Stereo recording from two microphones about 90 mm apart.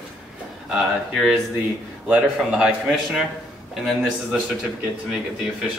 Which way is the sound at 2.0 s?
15° right (ahead or behind).